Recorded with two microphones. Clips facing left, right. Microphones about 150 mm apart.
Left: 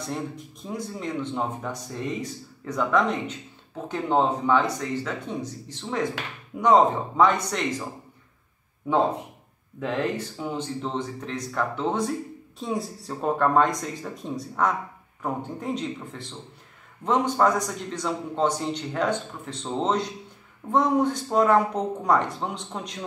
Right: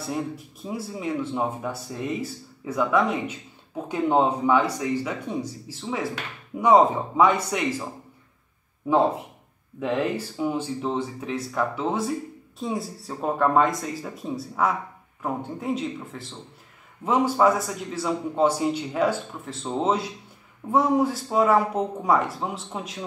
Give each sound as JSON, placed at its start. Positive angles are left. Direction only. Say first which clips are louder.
{"t": 0.0, "sound": "speech", "louder": "right 2 dB", "side_deg": -5}
{"t": 9.8, "sound": "speech", "louder": "right 2 dB", "side_deg": -10}